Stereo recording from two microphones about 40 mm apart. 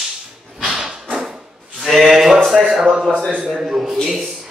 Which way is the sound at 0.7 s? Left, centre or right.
Centre.